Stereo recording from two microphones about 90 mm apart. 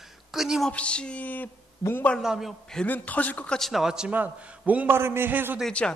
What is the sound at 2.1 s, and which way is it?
Speech, 5° right (ahead or behind).